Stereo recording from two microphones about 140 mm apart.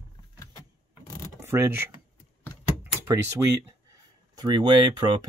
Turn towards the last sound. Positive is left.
turn(degrees=-30)  # may be behind; listen again after turning